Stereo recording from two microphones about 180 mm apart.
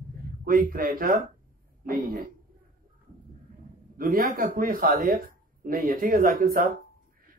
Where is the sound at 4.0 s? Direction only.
55° right (ahead or behind).